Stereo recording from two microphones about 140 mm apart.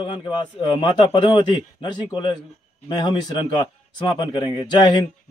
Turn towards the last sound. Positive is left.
turn(degrees=35)  # may be behind; listen again after turning